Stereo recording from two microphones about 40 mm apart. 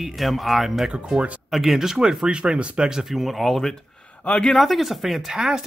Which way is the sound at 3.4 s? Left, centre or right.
Centre.